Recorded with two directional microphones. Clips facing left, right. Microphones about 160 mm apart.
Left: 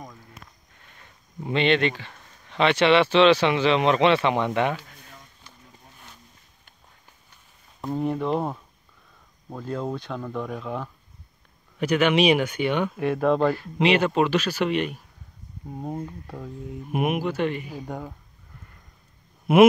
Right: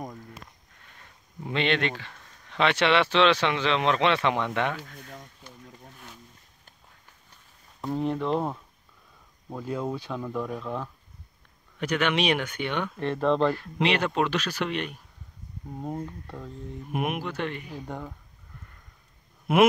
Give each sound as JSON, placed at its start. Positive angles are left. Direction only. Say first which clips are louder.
{"t": 1.4, "sound": "speech", "louder": "left 5 dB", "side_deg": 0}
{"t": 7.8, "sound": "speech", "louder": "left 2 dB", "side_deg": 5}